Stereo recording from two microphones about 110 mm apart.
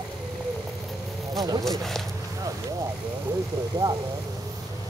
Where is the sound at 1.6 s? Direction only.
Centre (ahead or behind).